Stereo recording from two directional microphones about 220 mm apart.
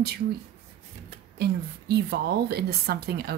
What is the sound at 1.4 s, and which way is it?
Speech, 45° right (ahead or behind).